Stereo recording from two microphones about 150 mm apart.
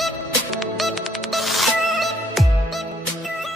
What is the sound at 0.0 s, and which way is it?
Music, centre (ahead or behind).